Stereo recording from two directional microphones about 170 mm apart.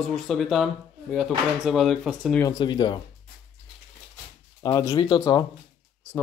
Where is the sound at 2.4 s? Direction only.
25° left (ahead or behind).